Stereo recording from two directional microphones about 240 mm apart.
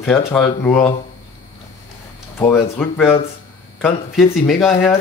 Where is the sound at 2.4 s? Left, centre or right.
Centre.